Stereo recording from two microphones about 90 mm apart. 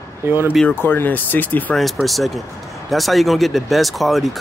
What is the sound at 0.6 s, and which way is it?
Speech, 20° left (ahead or behind).